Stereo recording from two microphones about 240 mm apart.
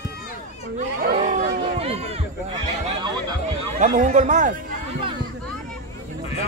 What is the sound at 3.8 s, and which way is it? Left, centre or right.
Speech, right.